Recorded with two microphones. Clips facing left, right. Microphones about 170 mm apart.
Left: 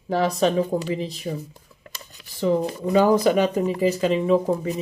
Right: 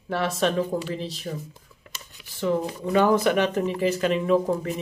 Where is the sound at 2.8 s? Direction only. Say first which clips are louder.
Left 2 dB; 15° left (ahead or behind).